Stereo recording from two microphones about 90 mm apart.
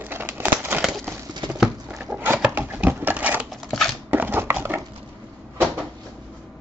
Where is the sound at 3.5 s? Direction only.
5° left (ahead or behind).